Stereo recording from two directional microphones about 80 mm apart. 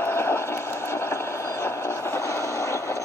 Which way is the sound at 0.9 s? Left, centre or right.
Left.